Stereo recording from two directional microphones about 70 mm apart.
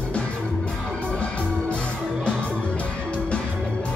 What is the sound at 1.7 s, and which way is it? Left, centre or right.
Music, centre.